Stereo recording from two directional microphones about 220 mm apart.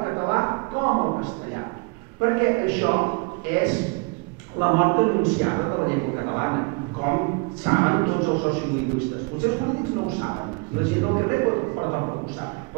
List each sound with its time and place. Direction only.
0.0 s a sound: 20° right (ahead or behind)
2.2 s a man's voice: 20° right (ahead or behind)
9.7 s a man's voice: 25° right (ahead or behind)